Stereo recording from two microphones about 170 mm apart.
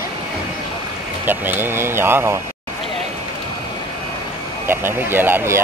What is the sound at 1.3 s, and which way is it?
Speech, 10° right (ahead or behind).